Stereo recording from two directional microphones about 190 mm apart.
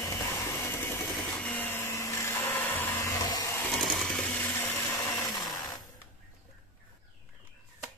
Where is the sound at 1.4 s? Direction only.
10° left (ahead or behind).